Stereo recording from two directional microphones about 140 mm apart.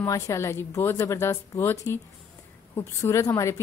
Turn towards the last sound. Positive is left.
turn(degrees=20)  # may be behind; listen again after turning